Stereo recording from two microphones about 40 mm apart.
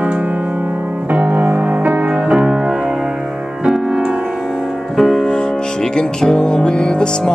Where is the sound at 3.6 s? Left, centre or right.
Centre.